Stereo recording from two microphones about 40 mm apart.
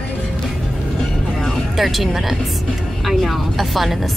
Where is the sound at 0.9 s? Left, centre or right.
Centre.